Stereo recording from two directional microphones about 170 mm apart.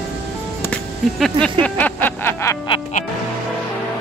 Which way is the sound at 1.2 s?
5° left (ahead or behind).